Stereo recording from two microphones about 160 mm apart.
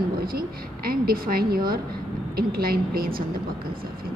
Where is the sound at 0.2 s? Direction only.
65° right (ahead or behind).